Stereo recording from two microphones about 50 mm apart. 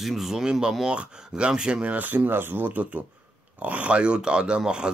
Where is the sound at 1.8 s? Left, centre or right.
Right.